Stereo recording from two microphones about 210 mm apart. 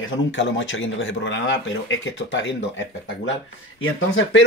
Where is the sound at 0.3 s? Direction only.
60° left (ahead or behind).